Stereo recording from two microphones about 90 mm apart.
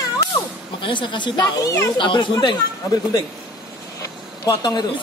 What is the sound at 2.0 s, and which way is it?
Speech, 60° left (ahead or behind).